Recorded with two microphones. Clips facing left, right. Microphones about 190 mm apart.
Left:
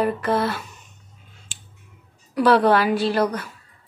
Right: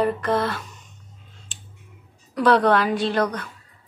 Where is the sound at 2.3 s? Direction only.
5° left (ahead or behind).